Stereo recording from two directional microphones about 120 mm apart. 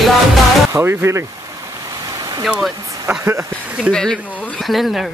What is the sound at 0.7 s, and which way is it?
Speech, 25° right (ahead or behind).